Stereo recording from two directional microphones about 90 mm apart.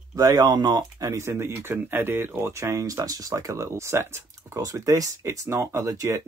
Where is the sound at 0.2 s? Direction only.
45° right (ahead or behind).